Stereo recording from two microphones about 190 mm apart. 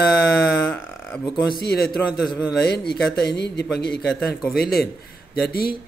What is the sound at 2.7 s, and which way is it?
Speech, 60° left (ahead or behind).